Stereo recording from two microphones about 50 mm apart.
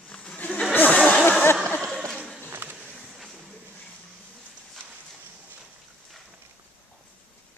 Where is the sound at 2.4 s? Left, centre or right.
Right.